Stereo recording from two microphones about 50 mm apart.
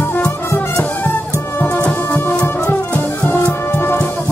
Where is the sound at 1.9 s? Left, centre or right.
Left.